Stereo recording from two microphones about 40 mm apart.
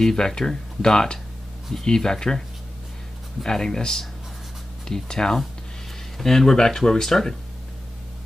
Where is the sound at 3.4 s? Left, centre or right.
Centre.